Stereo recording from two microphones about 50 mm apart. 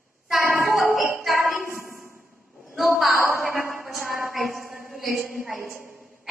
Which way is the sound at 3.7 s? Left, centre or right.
Centre.